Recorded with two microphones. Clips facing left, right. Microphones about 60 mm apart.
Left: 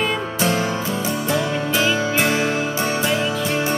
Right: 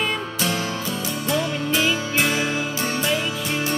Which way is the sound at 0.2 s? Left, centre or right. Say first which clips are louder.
Left 4 dB; left.